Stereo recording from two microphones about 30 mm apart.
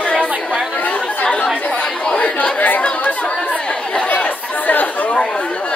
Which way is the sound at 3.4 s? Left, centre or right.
Left.